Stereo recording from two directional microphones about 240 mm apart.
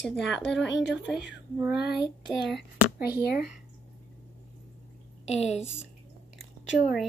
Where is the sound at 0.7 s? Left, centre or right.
Left.